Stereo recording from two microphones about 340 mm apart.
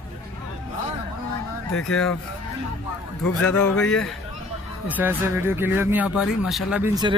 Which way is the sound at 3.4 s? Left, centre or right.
Centre.